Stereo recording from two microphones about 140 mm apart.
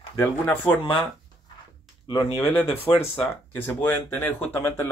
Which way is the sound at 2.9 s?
35° left (ahead or behind).